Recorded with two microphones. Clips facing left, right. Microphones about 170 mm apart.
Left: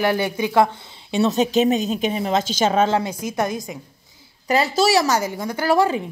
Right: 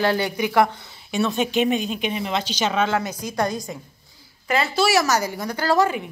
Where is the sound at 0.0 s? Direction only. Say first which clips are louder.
Left 1 dB; 20° left (ahead or behind).